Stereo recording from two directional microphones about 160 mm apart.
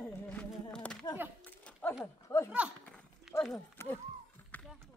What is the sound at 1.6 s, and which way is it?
Dog, 10° left (ahead or behind).